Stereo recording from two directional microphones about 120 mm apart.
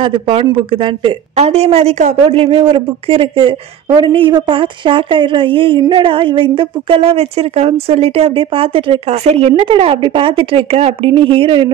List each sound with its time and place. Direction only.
0.0 s speech: 50° right (ahead or behind)
1.3 s speech: 60° right (ahead or behind)
9.1 s speech: 65° right (ahead or behind); by 11.7 s 45° right (ahead or behind)